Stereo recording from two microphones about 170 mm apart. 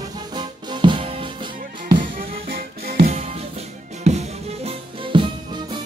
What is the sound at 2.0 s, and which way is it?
Music, 60° right (ahead or behind).